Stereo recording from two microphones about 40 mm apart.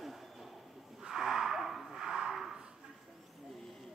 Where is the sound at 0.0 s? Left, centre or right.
Centre.